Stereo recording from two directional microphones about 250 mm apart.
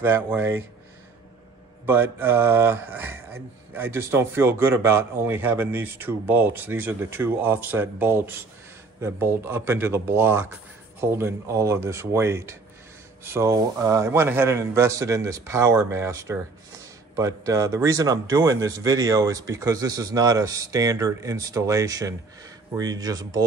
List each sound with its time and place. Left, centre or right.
0.0 s speech: centre
1.9 s speech: centre